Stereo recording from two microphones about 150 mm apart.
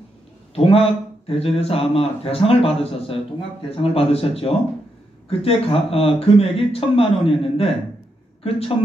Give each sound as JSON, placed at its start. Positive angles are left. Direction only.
{"t": 0.6, "sound": "speech", "side_deg": 40}